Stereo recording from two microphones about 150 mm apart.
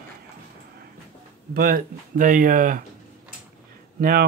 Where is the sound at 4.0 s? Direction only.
85° right.